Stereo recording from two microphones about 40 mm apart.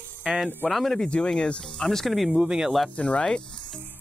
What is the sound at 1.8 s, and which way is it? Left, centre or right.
Speech, centre.